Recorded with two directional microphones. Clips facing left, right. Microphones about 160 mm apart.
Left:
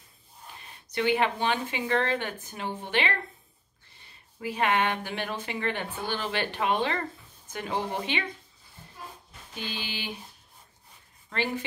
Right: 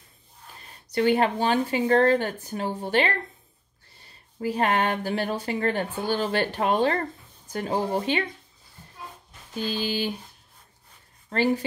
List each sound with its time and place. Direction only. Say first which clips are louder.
0.6 s speech: right 5 dB; 40° right (ahead or behind)
9.6 s speech: right 9 dB; 40° right (ahead or behind)
11.2 s speech: right 7 dB; 40° right (ahead or behind)